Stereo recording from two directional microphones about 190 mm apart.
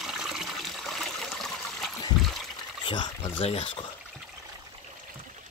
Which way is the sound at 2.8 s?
25° left (ahead or behind).